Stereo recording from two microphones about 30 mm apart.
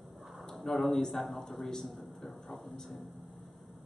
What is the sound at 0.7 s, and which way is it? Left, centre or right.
Speech, centre.